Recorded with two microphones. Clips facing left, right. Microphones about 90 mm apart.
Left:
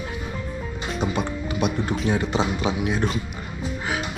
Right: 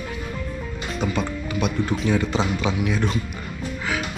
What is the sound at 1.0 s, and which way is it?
Speech, 25° left (ahead or behind).